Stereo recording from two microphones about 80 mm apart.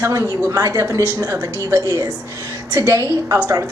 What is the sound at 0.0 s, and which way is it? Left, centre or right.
Speech, right.